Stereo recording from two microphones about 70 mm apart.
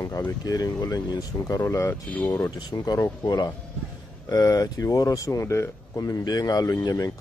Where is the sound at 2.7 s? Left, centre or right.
Left.